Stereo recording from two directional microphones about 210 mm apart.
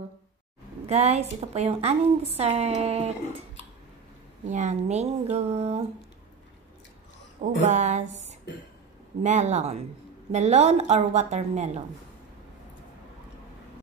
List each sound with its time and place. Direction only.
0.8 s a woman's voice: 30° right (ahead or behind)
4.5 s a woman's voice: 35° right (ahead or behind)
7.6 s a woman's voice: 35° right (ahead or behind)
9.2 s a woman's voice: 35° right (ahead or behind)